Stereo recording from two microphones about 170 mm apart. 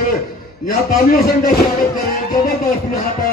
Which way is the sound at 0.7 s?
60° left (ahead or behind).